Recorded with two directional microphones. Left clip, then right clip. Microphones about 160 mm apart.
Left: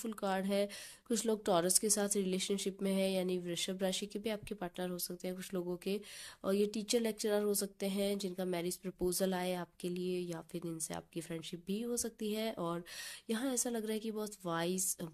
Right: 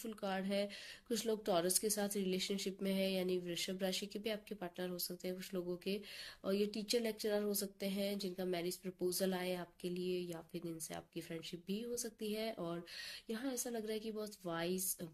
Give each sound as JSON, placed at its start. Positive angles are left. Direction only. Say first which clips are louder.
{"t": 0.0, "sound": "a woman's voice", "louder": "left 5 dB", "side_deg": 45}